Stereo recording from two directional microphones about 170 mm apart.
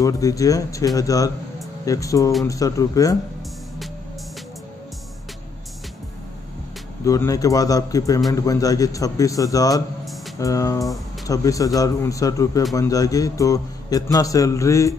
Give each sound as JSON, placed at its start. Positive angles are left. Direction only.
{"t": 0.0, "sound": "a man's voice", "side_deg": 20}
{"t": 7.1, "sound": "a man's voice", "side_deg": 20}